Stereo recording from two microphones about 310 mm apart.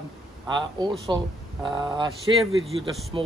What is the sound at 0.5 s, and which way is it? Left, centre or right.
Speech, centre.